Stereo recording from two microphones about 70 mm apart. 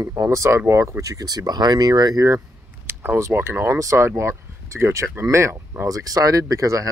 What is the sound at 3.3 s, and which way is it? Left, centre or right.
Speech, right.